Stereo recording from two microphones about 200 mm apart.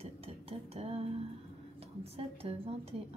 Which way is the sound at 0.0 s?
30° right (ahead or behind).